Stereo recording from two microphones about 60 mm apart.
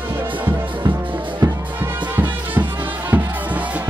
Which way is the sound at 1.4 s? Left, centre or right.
Right.